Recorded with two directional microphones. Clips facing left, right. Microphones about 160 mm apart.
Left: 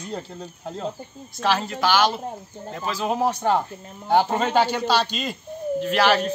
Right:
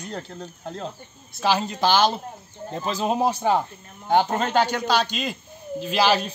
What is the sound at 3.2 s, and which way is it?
Speech, 10° right (ahead or behind).